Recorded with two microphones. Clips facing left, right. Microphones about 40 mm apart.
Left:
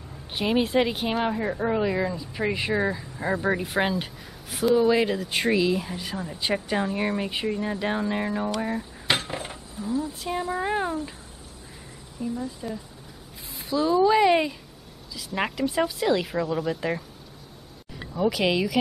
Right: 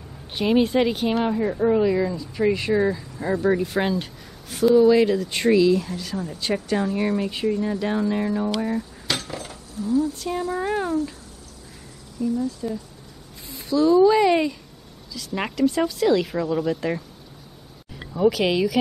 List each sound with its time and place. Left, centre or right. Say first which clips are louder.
0.3 s a woman's voice: right 4 dB; centre
9.0 s dishes: left 2 dB; left
10.1 s speech: right 2 dB; centre
12.2 s speech: right 6 dB; left
13.5 s speech: right 5 dB; centre
18.1 s a woman's voice: right 4 dB; centre